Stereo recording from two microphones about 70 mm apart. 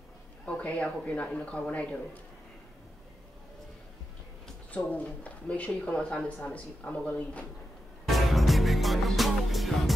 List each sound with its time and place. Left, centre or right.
0.5 s a man's voice: centre
4.7 s a man's voice: centre
8.1 s music: centre